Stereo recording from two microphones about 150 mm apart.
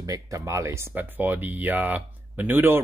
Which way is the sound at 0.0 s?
20° right (ahead or behind).